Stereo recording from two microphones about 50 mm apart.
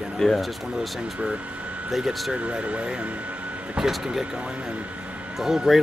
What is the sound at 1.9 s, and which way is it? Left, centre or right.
Speech, centre.